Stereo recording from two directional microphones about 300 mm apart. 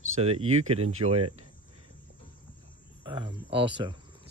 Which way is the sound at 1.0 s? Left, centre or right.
Centre.